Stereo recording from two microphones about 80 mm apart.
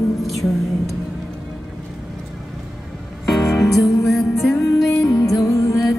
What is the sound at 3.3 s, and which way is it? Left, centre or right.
Music, left.